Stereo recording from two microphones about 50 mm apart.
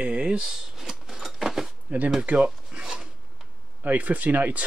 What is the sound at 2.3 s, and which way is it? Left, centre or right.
Speech, right.